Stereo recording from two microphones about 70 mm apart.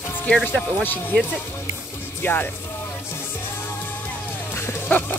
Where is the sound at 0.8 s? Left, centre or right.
Left.